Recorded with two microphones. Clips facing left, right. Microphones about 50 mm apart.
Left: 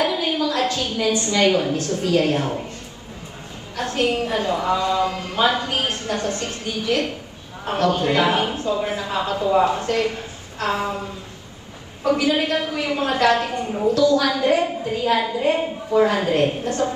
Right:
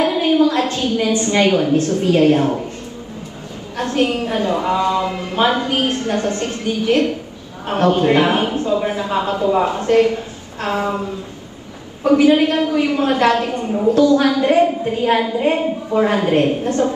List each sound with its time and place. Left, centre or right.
0.0 s a woman's voice: right
3.7 s a woman's voice: right
12.0 s a woman's voice: right